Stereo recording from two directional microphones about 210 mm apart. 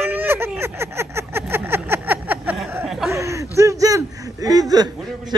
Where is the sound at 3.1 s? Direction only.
15° right (ahead or behind).